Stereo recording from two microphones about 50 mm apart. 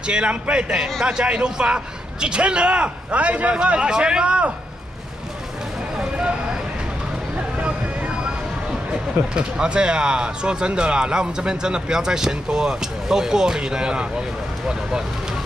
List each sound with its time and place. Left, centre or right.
0.0 s a man's voice: right
5.9 s a sound: centre
7.5 s vehicle: right
8.9 s speech: centre